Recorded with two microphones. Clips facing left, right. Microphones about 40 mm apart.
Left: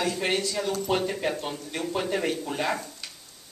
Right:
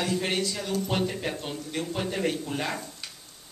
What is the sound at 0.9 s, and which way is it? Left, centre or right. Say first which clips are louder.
Speech: left 2 dB; centre.